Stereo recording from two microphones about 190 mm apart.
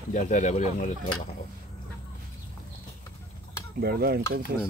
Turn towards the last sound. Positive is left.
turn(degrees=-55)  # may be behind; listen again after turning